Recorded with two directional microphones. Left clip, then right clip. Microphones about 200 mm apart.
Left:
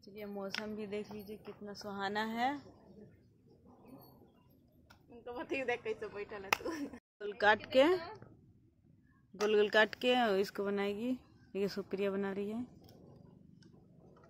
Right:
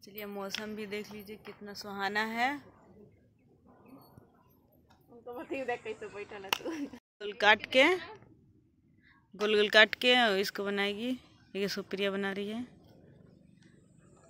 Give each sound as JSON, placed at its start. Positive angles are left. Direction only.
{"t": 0.0, "sound": "speech", "side_deg": -15}
{"t": 5.2, "sound": "speech", "side_deg": -10}
{"t": 5.6, "sound": "speech", "side_deg": -20}
{"t": 7.2, "sound": "speech", "side_deg": 0}
{"t": 9.4, "sound": "speech", "side_deg": -5}